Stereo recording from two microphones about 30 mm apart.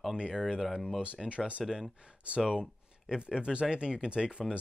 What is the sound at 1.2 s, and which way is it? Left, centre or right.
Speech, centre.